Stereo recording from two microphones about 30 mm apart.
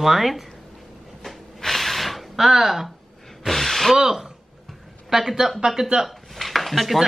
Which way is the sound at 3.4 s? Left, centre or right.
Centre.